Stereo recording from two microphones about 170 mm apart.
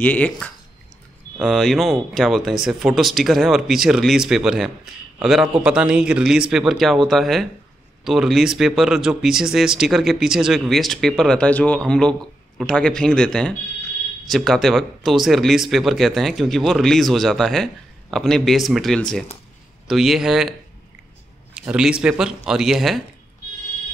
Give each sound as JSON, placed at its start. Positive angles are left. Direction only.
{"t": 0.0, "sound": "speech", "side_deg": 10}
{"t": 21.5, "sound": "speech", "side_deg": -5}